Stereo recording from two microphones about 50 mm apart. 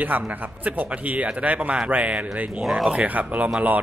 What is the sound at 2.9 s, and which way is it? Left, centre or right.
Speech, right.